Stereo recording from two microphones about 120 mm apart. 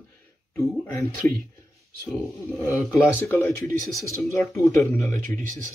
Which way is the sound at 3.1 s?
20° left (ahead or behind).